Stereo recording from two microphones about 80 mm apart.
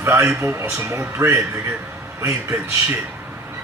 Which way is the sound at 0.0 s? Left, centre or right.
Right.